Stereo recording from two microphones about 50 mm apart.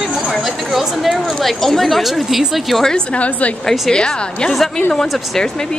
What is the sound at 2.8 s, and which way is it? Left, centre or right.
A woman's voice, centre.